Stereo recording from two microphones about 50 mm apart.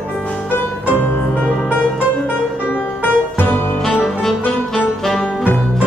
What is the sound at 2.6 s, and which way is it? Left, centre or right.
Music, left.